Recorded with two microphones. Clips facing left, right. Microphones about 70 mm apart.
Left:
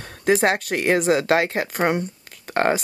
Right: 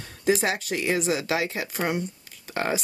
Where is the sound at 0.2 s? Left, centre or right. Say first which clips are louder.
Left 5 dB; left.